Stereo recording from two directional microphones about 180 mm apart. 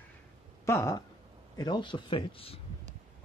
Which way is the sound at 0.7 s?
15° left (ahead or behind).